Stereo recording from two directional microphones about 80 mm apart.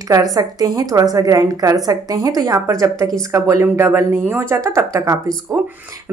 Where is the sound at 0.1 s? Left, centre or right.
Right.